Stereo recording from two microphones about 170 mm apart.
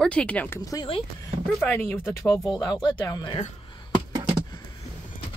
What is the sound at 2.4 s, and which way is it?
Speech, 25° left (ahead or behind).